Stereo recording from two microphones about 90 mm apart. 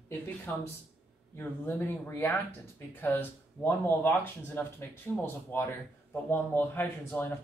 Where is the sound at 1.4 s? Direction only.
25° left (ahead or behind).